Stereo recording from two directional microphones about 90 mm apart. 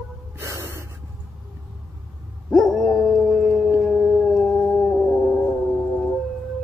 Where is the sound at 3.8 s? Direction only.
Centre (ahead or behind).